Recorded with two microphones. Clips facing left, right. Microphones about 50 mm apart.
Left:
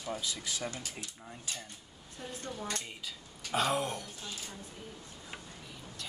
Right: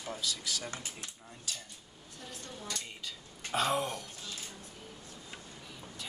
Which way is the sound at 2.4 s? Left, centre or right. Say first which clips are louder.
Left 4 dB; left.